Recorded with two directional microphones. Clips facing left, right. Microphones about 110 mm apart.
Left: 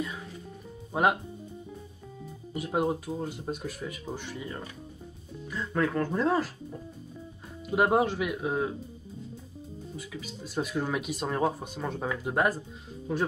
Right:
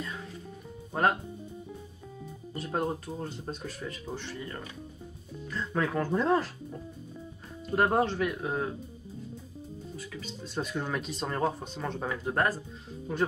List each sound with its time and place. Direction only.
0.9 s speech: 10° left (ahead or behind)
2.5 s speech: 10° left (ahead or behind)
5.7 s speech: centre (ahead or behind)
7.7 s speech: 10° left (ahead or behind)
9.9 s speech: 5° left (ahead or behind)